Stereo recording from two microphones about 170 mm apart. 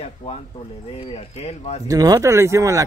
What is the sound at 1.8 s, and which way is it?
Speech, 20° right (ahead or behind).